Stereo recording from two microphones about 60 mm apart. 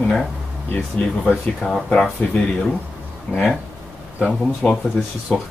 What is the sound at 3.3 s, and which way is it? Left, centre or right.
Speech, left.